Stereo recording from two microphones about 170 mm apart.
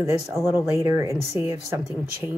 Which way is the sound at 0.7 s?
15° right (ahead or behind).